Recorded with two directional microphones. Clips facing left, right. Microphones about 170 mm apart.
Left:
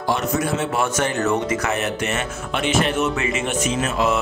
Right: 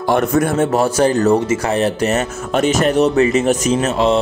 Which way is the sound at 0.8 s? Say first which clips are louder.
Right 8 dB; 35° right (ahead or behind).